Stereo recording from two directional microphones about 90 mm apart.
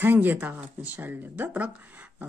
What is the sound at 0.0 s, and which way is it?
Speech, 20° right (ahead or behind).